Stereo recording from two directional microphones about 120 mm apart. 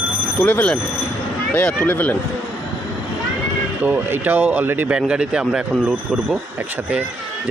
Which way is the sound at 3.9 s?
15° right (ahead or behind).